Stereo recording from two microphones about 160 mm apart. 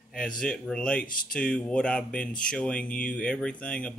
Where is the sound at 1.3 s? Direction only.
5° left (ahead or behind).